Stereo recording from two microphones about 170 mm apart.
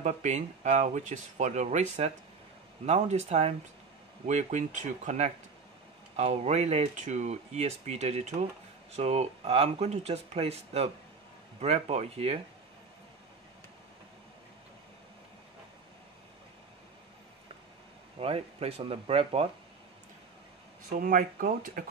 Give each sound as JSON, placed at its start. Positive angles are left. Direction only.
{"t": 0.0, "sound": "speech", "side_deg": -45}
{"t": 18.2, "sound": "speech", "side_deg": -35}
{"t": 20.9, "sound": "speech", "side_deg": -50}